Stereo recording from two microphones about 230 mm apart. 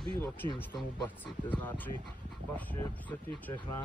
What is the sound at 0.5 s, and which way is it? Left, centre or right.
Speech, centre.